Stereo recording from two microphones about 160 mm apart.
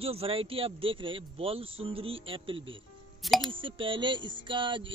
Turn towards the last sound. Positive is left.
turn(degrees=-30)  # may be behind; listen again after turning